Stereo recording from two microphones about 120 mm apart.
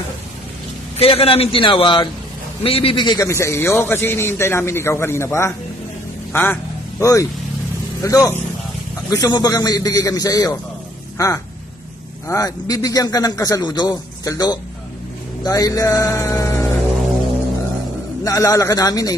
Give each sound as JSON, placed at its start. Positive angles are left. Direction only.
{"t": 0.9, "sound": "a man's voice", "side_deg": 55}
{"t": 3.3, "sound": "a man's voice", "side_deg": 20}
{"t": 18.2, "sound": "a man's voice", "side_deg": 30}